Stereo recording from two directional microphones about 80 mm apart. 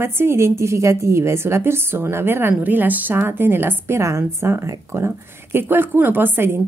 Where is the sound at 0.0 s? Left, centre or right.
Right.